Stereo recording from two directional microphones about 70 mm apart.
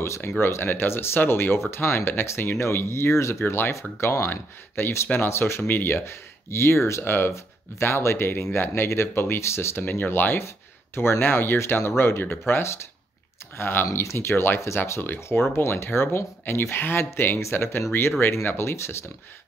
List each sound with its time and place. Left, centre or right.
0.0 s speech: left
4.0 s speech: left
4.3 s speech: left
5.6 s speech: left